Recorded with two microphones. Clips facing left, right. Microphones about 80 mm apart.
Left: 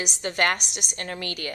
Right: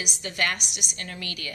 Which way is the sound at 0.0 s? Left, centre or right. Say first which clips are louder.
Left 4 dB; left.